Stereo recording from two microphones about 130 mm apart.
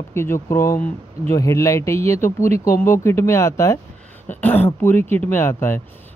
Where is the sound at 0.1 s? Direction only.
20° left (ahead or behind).